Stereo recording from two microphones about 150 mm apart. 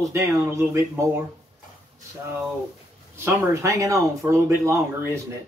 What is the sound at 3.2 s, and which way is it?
Speech, 20° right (ahead or behind).